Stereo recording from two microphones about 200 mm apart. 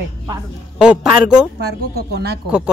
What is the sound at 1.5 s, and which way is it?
Speech, 55° right (ahead or behind).